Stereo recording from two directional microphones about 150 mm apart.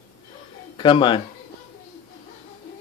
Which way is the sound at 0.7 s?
35° left (ahead or behind).